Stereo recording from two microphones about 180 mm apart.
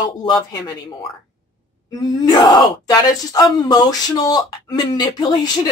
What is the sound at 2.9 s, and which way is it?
Speech, 20° left (ahead or behind).